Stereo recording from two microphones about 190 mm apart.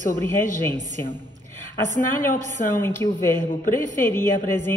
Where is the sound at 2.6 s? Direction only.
45° left (ahead or behind).